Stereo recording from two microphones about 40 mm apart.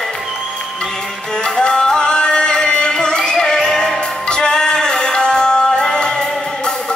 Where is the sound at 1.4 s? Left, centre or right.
Centre.